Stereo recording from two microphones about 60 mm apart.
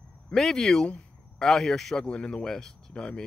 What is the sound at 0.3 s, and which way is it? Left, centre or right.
Speech, centre.